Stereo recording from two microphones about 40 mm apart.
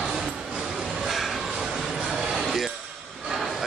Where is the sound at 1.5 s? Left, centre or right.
Centre.